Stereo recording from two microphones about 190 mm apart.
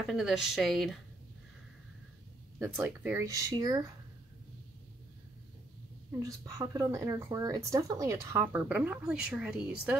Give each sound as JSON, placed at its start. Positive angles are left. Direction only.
{"t": 0.1, "sound": "speech", "side_deg": -5}
{"t": 2.6, "sound": "speech", "side_deg": -10}
{"t": 6.2, "sound": "speech", "side_deg": -20}